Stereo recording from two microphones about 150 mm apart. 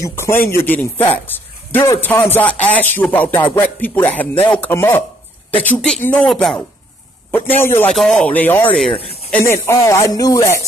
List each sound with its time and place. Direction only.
0.0 s a man's voice: 15° left (ahead or behind)
7.9 s a man's voice: 5° left (ahead or behind); by 10.6 s 20° left (ahead or behind)